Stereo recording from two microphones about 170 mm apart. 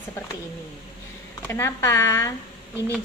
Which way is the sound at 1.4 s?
15° left (ahead or behind).